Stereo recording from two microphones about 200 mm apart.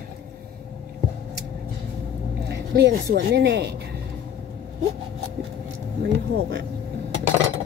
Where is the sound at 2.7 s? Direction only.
55° right (ahead or behind).